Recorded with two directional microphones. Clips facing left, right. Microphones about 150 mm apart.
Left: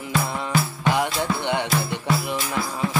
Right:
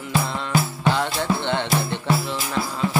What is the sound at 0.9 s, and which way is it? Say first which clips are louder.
Music: even; 15° left (ahead or behind).